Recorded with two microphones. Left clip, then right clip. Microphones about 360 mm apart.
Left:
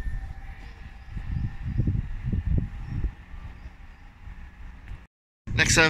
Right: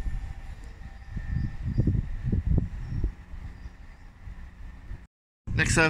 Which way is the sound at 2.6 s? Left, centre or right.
Right.